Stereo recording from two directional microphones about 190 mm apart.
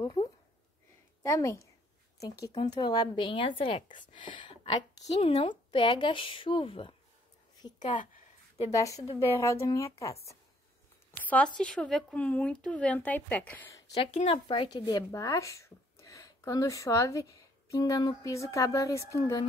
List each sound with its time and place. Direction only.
0.0 s a sound: 25° left (ahead or behind)
1.2 s a woman's voice: 15° left (ahead or behind)
7.8 s a woman's voice: 40° left (ahead or behind)
8.7 s speech: 15° left (ahead or behind)
11.2 s speech: 5° left (ahead or behind)
13.9 s speech: 30° left (ahead or behind)